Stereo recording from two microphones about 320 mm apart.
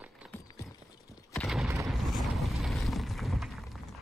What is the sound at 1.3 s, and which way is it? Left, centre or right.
Boom, centre.